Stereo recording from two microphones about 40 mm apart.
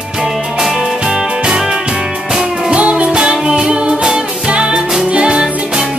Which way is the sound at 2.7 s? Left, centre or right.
Right.